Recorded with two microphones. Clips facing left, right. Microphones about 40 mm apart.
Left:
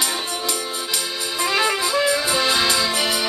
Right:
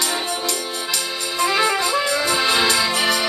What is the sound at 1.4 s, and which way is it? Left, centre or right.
Music, centre.